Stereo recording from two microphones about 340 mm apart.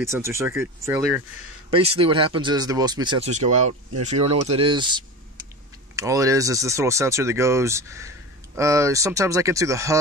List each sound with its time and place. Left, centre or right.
0.0 s speech: centre
1.7 s speech: centre